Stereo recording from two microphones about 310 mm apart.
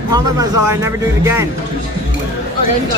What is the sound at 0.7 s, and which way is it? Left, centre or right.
Speech, centre.